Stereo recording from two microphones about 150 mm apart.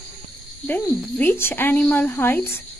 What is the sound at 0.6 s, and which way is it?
Speech, 10° left (ahead or behind).